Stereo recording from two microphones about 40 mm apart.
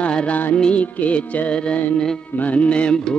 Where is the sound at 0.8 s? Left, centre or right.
Left.